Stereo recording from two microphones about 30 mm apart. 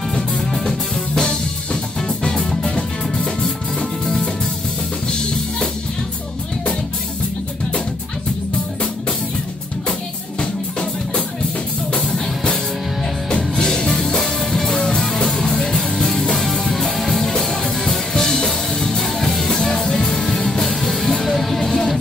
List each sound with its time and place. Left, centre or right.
0.4 s music: centre
1.1 s drum kit: left
2.0 s music: left
3.8 s music: centre
10.4 s music: left
13.4 s music: centre
14.1 s music: left
14.5 s music: centre
15.8 s music: centre
19.4 s music: centre
20.2 s music: centre